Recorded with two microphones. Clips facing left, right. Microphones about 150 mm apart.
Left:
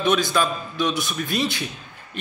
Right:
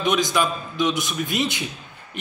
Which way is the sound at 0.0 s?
20° right (ahead or behind).